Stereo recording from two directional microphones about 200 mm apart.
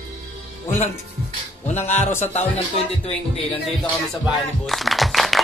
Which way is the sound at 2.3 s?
30° left (ahead or behind).